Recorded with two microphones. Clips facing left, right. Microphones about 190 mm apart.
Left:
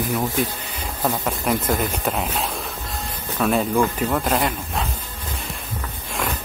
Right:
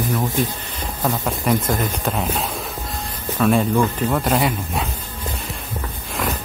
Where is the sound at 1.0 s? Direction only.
Centre (ahead or behind).